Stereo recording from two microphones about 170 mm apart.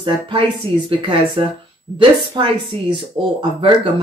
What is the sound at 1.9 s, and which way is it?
Speech, 30° right (ahead or behind).